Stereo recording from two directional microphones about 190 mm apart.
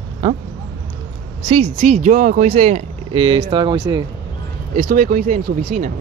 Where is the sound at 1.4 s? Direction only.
35° right (ahead or behind).